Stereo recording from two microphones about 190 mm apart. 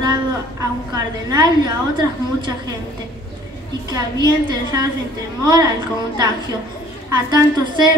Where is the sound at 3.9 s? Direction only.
20° right (ahead or behind).